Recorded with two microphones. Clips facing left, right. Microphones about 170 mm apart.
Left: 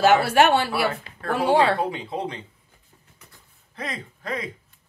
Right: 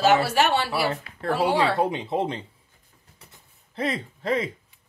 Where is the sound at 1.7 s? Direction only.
20° right (ahead or behind).